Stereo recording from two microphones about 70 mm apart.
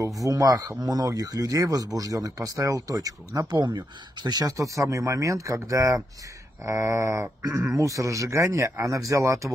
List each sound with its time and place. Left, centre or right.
0.0 s speech: right
7.5 s a man's voice: right
7.8 s speech: right